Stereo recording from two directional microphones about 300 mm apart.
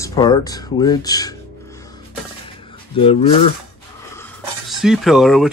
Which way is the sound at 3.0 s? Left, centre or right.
Centre.